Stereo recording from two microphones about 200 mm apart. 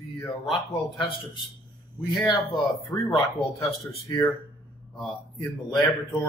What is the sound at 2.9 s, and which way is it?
Speech, 15° left (ahead or behind).